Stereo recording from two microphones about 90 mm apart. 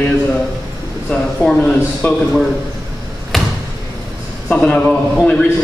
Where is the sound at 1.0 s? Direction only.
15° left (ahead or behind).